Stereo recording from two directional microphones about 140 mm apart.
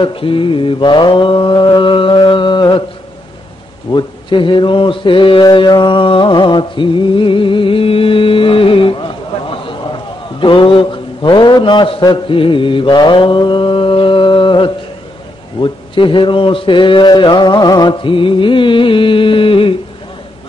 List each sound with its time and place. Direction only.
0.0 s mantra: 40° left (ahead or behind)
3.9 s mantra: 35° left (ahead or behind)